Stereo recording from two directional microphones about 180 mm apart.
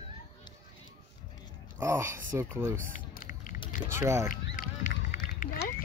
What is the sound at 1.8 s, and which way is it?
Speech, 15° right (ahead or behind).